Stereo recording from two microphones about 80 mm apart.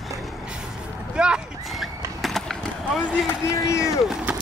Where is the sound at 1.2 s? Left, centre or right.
Centre.